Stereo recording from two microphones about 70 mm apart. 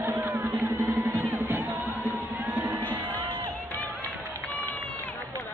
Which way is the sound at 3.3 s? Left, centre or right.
Left.